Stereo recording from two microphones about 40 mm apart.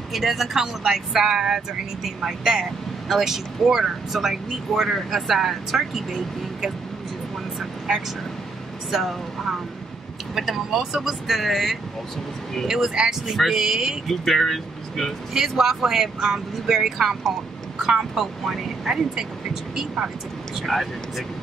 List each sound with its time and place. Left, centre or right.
0.1 s speech: centre
8.9 s speech: centre
13.3 s speech: centre
14.0 s speech: centre
15.3 s speech: centre
20.6 s speech: centre